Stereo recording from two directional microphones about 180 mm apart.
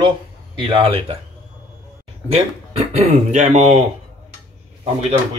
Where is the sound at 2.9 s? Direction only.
40° right (ahead or behind).